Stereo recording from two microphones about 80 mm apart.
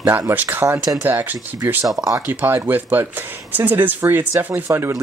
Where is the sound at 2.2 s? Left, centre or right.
Right.